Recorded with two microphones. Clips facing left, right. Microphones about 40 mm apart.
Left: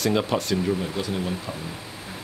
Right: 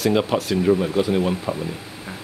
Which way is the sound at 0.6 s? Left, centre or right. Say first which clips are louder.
Right 8 dB; right.